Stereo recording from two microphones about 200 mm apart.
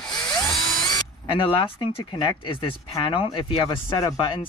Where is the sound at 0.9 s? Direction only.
25° left (ahead or behind).